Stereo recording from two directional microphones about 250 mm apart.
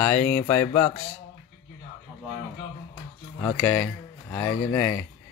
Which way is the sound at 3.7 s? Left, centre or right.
Centre.